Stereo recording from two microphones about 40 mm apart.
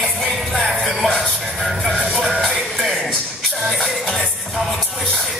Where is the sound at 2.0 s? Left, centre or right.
Centre.